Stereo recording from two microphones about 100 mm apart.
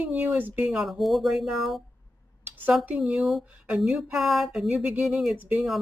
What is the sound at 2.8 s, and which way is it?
Speech, 10° right (ahead or behind).